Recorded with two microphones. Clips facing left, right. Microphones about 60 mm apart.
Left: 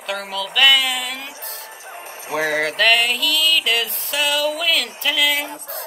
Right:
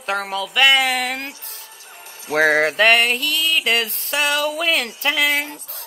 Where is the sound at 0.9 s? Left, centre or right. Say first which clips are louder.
Right 4 dB; right.